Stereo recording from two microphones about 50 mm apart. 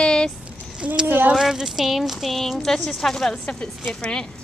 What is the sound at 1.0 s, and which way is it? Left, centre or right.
Speech, right.